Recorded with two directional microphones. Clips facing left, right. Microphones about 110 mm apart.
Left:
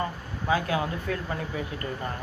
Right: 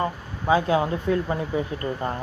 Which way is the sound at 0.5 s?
20° right (ahead or behind).